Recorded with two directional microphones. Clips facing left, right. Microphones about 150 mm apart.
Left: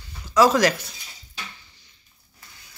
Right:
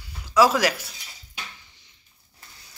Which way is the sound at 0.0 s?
5° right (ahead or behind).